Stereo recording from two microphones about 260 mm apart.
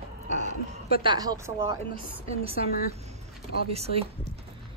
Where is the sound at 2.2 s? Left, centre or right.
Right.